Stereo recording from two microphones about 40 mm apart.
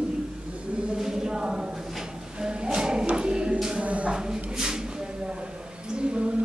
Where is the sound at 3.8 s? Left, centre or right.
Right.